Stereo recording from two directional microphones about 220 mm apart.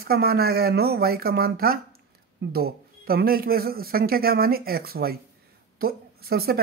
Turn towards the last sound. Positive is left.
turn(degrees=-45)  # may be behind; listen again after turning